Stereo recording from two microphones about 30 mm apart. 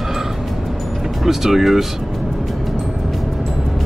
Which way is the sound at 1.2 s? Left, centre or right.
Centre.